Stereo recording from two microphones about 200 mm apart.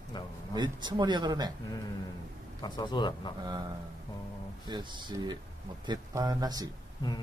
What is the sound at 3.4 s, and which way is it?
Speech, 20° right (ahead or behind).